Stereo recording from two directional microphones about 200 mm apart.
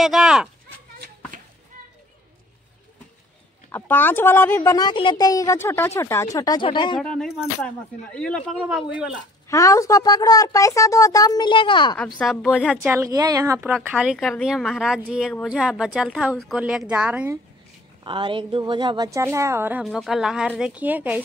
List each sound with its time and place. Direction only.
0.0 s speech: centre (ahead or behind)
3.7 s a woman's voice: 10° left (ahead or behind)
7.0 s speech: 5° left (ahead or behind)
9.5 s a woman's voice: 15° left (ahead or behind)
12.2 s a woman's voice: centre (ahead or behind); by 13.7 s 15° right (ahead or behind)
13.7 s a woman's voice: 5° right (ahead or behind)
18.0 s a woman's voice: 25° right (ahead or behind)
19.8 s speech: centre (ahead or behind)